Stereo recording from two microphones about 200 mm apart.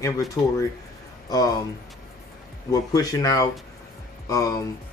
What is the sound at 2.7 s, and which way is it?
Speech, 20° left (ahead or behind).